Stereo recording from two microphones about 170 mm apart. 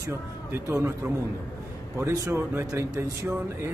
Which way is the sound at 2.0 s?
15° right (ahead or behind).